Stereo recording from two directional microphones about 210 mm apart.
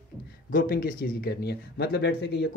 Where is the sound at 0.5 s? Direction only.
45° left (ahead or behind).